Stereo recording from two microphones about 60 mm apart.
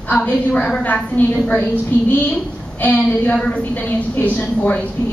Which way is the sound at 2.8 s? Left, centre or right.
Left.